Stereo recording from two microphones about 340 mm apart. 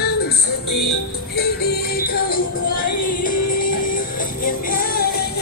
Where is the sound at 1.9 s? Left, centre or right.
Left.